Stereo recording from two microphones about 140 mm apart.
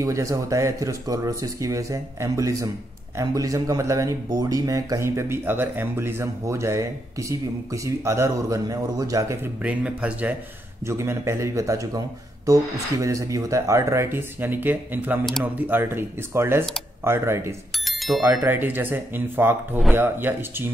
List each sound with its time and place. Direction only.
0.0 s speech: 25° right (ahead or behind)
9.6 s speech: 10° right (ahead or behind)
10.9 s speech: 20° right (ahead or behind)
17.7 s bicycle bell: centre (ahead or behind)
18.2 s speech: 15° right (ahead or behind)